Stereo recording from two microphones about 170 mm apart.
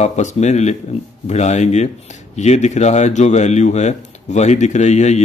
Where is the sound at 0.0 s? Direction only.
45° left (ahead or behind).